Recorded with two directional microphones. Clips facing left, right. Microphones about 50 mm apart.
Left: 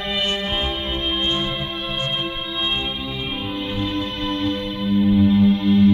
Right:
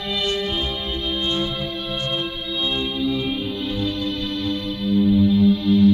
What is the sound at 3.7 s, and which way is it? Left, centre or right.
Music, left.